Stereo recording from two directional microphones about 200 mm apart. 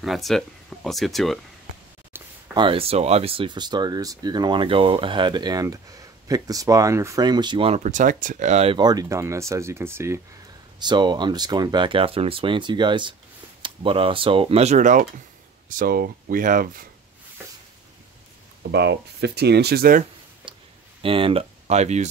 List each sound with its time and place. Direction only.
0.0 s speech: centre (ahead or behind)
2.1 s a sound: 10° right (ahead or behind)
2.5 s speech: 25° right (ahead or behind); by 16.8 s 40° right (ahead or behind)
18.6 s speech: 55° right (ahead or behind)
20.5 s a sound: 25° right (ahead or behind)
21.0 s speech: 25° right (ahead or behind)